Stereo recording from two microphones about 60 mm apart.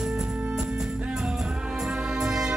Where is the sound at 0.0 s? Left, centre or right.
Centre.